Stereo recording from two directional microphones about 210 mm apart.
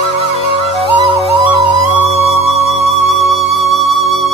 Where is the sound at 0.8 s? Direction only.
25° left (ahead or behind).